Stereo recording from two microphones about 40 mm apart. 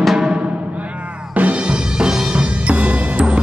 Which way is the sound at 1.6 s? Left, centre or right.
Right.